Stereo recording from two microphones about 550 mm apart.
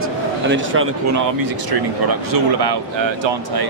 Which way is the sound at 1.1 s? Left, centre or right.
Right.